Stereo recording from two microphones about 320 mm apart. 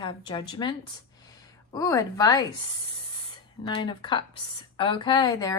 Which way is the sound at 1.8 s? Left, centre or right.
Centre.